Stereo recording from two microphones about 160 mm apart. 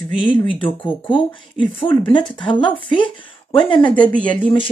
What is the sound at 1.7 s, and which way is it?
Speech, 30° left (ahead or behind).